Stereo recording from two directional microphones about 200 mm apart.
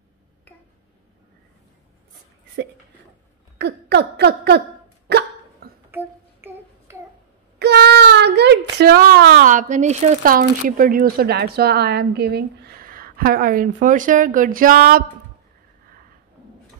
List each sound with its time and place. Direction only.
3.5 s a sound: 55° right (ahead or behind)
5.9 s child singing: 10° right (ahead or behind)
7.5 s speech: 55° right (ahead or behind)